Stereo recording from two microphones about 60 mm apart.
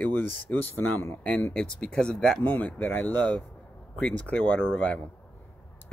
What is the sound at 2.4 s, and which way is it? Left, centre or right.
Speech, left.